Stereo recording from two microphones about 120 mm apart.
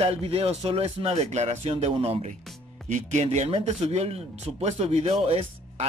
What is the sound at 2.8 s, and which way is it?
Speech, 80° right.